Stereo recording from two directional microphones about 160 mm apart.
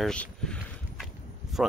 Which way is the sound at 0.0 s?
5° left (ahead or behind).